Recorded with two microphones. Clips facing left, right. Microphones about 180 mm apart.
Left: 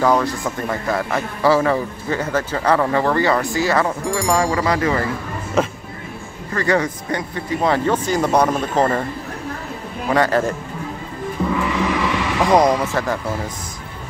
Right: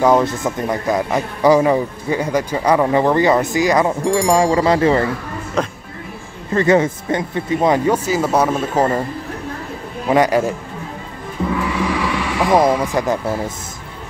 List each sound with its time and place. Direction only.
0.0 s speech: 20° right (ahead or behind)
5.6 s speech: 5° left (ahead or behind)
6.5 s speech: 20° right (ahead or behind)
10.0 s speech: 15° right (ahead or behind)
11.7 s vehicle: 10° right (ahead or behind)
12.5 s speech: 10° right (ahead or behind)